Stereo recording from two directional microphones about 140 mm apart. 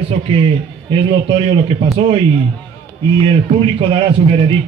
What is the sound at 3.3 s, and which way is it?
Speech, 40° right (ahead or behind).